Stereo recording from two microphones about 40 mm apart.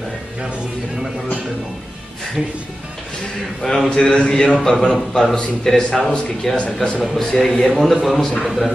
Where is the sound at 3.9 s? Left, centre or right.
Left.